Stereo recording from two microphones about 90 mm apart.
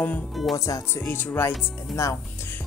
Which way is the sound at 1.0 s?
25° left (ahead or behind).